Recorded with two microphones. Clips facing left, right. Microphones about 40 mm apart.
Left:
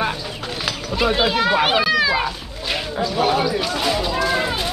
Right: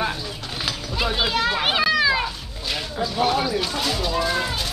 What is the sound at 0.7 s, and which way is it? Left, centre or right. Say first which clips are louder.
A child's voice: left 5 dB; centre.